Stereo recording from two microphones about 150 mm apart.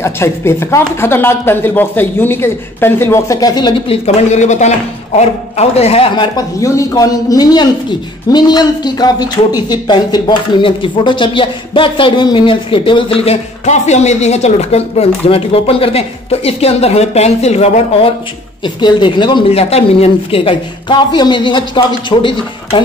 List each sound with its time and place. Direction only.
0.0 s speech: 15° left (ahead or behind); by 6.2 s 40° left (ahead or behind)
6.3 s speech: 20° left (ahead or behind); by 17.8 s 45° left (ahead or behind)
18.6 s speech: 30° left (ahead or behind)
19.6 s speech: 45° left (ahead or behind)